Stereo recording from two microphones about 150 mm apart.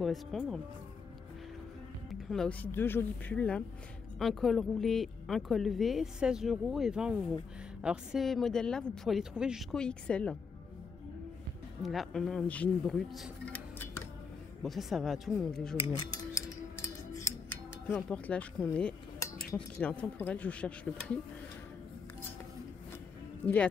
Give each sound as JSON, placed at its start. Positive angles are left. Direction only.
{"t": 0.0, "sound": "a woman's voice", "side_deg": 0}
{"t": 2.0, "sound": "a woman's voice", "side_deg": 0}
{"t": 11.8, "sound": "a woman's voice", "side_deg": 0}
{"t": 14.6, "sound": "a woman's voice", "side_deg": 0}
{"t": 16.0, "sound": "music", "side_deg": 20}
{"t": 18.1, "sound": "speech", "side_deg": 10}
{"t": 23.4, "sound": "speech", "side_deg": 10}